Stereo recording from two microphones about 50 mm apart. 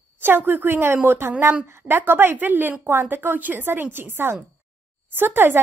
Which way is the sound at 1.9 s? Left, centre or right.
Right.